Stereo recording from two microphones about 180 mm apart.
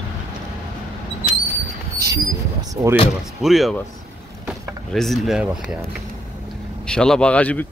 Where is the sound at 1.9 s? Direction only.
20° right (ahead or behind).